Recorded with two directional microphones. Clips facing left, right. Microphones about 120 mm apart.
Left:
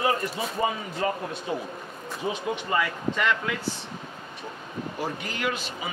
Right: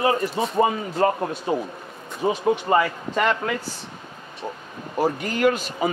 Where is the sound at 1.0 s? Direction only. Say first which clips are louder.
Right 7 dB; 50° right (ahead or behind).